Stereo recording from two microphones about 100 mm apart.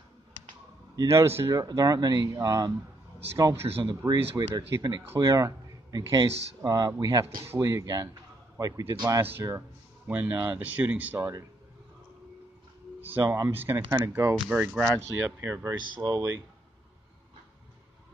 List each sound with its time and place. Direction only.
1.0 s speech: 25° right (ahead or behind)
1.6 s speech: 35° right (ahead or behind)
3.6 s speech: 75° right (ahead or behind)
3.9 s speech: 35° right (ahead or behind)
7.4 s speech: 25° right (ahead or behind); by 9.2 s 45° right (ahead or behind)
9.2 s speech: 25° right (ahead or behind)
11.1 s speech: 30° right (ahead or behind)
13.0 s speech: 20° right (ahead or behind)
14.3 s speech: 10° right (ahead or behind)
15.2 s speech: 25° right (ahead or behind)
15.7 s speech: 50° right (ahead or behind)